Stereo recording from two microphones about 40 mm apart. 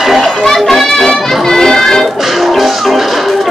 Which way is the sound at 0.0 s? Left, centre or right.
Centre.